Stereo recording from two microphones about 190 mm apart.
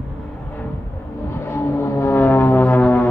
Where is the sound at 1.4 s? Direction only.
10° left (ahead or behind).